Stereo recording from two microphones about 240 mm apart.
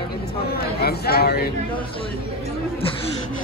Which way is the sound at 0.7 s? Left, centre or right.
Left.